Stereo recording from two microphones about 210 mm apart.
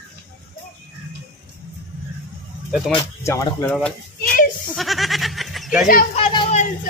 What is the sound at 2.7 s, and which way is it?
Speech, centre (ahead or behind).